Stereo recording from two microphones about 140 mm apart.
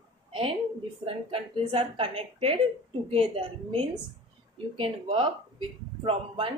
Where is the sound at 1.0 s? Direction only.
40° right (ahead or behind).